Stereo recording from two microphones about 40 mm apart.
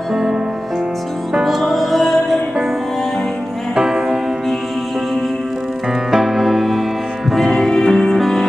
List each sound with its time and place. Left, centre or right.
0.1 s music: centre
1.4 s music: centre
3.7 s music: centre
6.1 s music: centre